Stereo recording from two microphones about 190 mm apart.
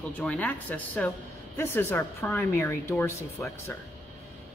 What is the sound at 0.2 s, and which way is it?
A woman's voice, 5° left (ahead or behind).